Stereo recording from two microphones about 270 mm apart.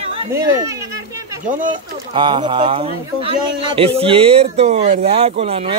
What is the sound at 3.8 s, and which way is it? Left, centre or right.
Speech, right.